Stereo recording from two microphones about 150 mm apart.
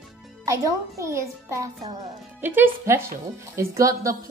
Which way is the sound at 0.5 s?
20° right (ahead or behind).